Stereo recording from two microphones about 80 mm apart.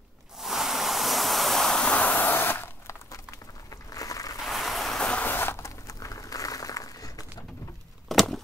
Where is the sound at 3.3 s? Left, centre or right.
Left.